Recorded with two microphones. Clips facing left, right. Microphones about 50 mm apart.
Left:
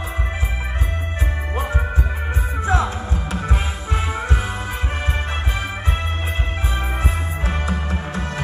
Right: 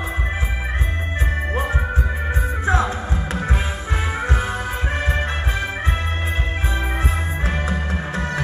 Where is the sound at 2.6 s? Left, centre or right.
Right.